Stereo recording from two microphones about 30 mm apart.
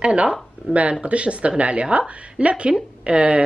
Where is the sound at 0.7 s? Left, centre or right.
Right.